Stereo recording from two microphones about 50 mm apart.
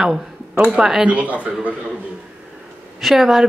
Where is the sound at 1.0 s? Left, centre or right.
Right.